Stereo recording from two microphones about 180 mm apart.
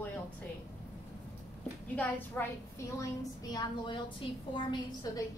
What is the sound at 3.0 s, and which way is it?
A woman's voice, 20° left (ahead or behind).